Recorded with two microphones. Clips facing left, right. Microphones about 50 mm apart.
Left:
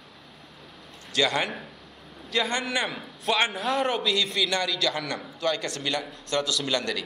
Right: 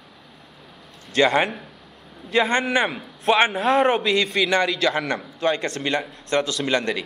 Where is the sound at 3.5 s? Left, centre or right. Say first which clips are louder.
Right 7 dB; centre.